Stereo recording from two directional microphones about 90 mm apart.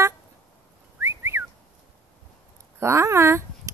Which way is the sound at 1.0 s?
30° right (ahead or behind).